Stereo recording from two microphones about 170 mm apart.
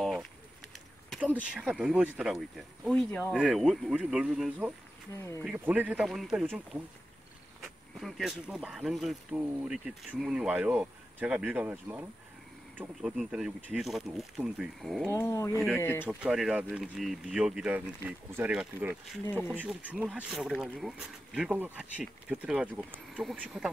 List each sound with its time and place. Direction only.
0.7 s a sound: centre (ahead or behind)
1.3 s speech: 5° right (ahead or behind)
3.3 s speech: 5° right (ahead or behind)
5.1 s speech: 15° left (ahead or behind)
5.4 s speech: 5° right (ahead or behind)
15.1 s speech: 15° left (ahead or behind)
16.1 s speech: 5° right (ahead or behind)